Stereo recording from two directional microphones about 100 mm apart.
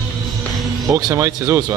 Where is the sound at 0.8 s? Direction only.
35° right (ahead or behind).